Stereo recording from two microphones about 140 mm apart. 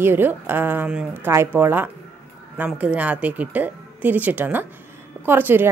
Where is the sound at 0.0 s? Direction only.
15° right (ahead or behind).